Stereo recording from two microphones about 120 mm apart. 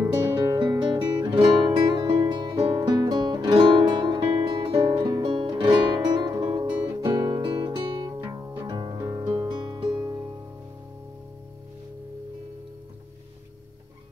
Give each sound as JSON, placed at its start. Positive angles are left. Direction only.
{"t": 0.6, "sound": "guitar", "side_deg": -35}
{"t": 2.3, "sound": "music", "side_deg": -40}